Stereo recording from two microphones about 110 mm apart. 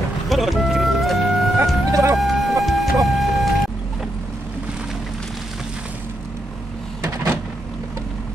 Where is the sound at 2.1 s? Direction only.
Centre (ahead or behind).